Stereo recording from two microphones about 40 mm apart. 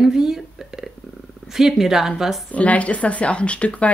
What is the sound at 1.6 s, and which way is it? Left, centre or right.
Speech, centre.